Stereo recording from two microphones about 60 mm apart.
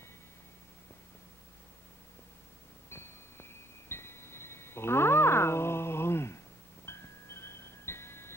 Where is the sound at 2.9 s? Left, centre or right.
Left.